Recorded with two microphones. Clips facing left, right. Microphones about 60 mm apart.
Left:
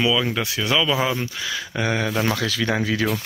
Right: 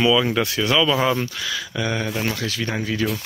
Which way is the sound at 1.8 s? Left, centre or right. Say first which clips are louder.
Left 2 dB; left.